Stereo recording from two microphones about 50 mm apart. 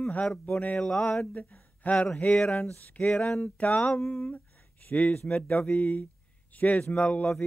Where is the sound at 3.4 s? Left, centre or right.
Left.